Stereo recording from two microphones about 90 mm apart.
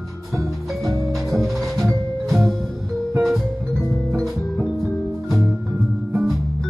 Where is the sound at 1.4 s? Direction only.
Centre (ahead or behind).